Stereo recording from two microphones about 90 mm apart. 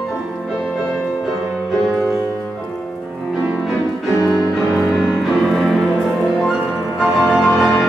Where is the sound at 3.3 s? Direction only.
5° right (ahead or behind).